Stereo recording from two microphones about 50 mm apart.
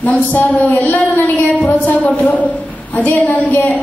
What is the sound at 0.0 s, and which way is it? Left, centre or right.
A woman's voice, left.